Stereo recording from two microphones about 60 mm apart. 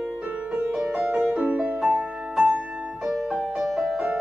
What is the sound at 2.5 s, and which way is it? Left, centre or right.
Music, centre.